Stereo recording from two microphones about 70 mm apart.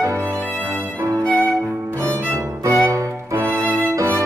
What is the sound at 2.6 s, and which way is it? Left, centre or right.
Music, right.